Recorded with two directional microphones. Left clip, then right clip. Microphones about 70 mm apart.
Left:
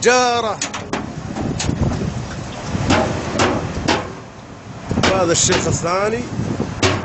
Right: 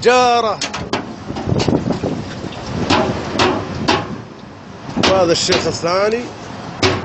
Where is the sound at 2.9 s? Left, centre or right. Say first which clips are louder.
Right 1 dB; centre.